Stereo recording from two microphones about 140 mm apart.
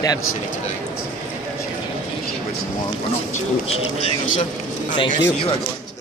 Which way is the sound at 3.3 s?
45° left (ahead or behind).